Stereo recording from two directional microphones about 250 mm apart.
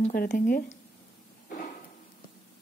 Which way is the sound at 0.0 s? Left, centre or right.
Left.